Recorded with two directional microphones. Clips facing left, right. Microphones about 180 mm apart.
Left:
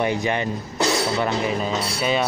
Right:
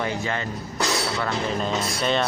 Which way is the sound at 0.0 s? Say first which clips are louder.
Left 5 dB; 20° left (ahead or behind).